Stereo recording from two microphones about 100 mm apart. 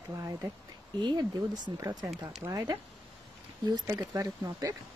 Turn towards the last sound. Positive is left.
turn(degrees=-35)  # may be behind; listen again after turning